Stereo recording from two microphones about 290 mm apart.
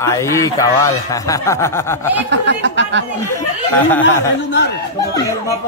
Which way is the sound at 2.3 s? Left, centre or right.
Right.